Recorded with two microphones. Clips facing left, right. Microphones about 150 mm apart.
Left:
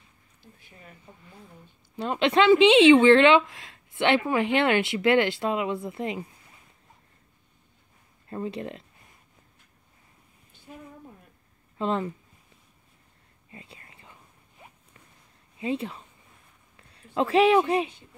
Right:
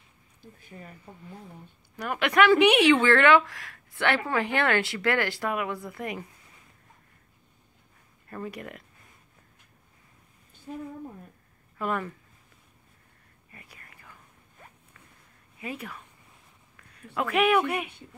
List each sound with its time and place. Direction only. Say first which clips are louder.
2.0 s a woman's voice: left 1 dB; 25° left (ahead or behind)
8.3 s a woman's voice: left 5 dB; 25° left (ahead or behind)
10.7 s a woman's voice: right 7 dB; 35° right (ahead or behind)
11.8 s a woman's voice: left 3 dB; 25° left (ahead or behind)
13.5 s whispering: left 5 dB; 25° left (ahead or behind)
15.6 s a woman's voice: left 8 dB; 25° left (ahead or behind)